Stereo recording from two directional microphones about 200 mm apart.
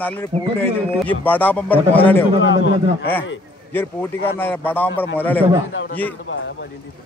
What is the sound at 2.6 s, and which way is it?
Speech, 65° left (ahead or behind).